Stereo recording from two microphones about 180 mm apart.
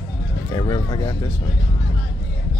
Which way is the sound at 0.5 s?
20° left (ahead or behind).